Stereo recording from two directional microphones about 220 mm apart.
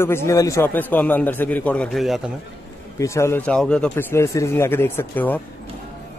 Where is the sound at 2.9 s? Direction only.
15° left (ahead or behind).